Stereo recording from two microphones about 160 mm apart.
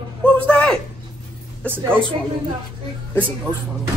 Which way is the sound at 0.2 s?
5° left (ahead or behind).